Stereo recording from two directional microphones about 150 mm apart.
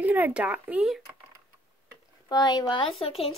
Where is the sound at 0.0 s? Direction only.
10° right (ahead or behind).